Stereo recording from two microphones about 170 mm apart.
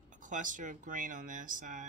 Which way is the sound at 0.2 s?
50° right (ahead or behind).